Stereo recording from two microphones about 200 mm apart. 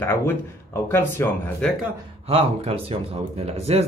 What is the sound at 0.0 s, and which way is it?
Speech, 10° left (ahead or behind).